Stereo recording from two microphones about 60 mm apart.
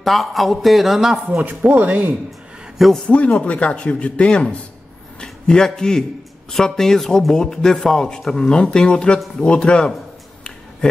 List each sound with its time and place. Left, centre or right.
0.0 s a man's voice: centre
1.7 s speech: right
3.1 s a man's voice: centre